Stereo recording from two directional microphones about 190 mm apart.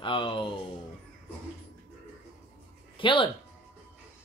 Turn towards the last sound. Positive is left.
turn(degrees=25)  # may be behind; listen again after turning